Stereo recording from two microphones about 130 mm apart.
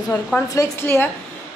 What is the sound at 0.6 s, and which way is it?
Speech, 20° left (ahead or behind).